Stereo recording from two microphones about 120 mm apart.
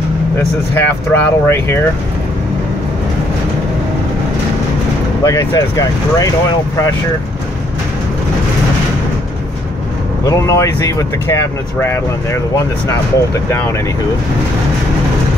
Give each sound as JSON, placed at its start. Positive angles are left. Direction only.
{"t": 0.7, "sound": "speech", "side_deg": 20}
{"t": 5.2, "sound": "speech", "side_deg": 30}
{"t": 10.2, "sound": "speech", "side_deg": 30}